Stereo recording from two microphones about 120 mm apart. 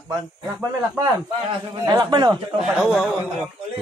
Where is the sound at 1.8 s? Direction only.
35° right (ahead or behind).